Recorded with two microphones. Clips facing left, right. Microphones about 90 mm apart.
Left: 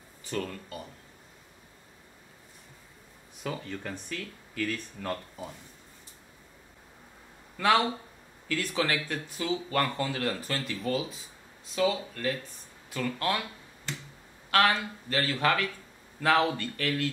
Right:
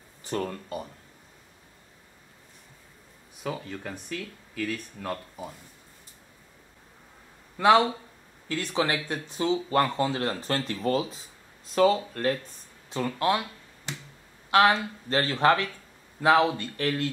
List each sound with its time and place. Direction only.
0.3 s speech: 35° right (ahead or behind)
3.4 s speech: 10° right (ahead or behind)
7.5 s speech: 20° right (ahead or behind)
9.3 s speech: 30° right (ahead or behind)
12.9 s speech: 25° right (ahead or behind)
14.5 s speech: 20° right (ahead or behind)
15.0 s speech: 30° right (ahead or behind)
16.2 s speech: 20° right (ahead or behind)